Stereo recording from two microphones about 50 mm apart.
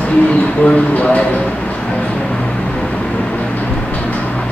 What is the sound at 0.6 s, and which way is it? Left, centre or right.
Speech, left.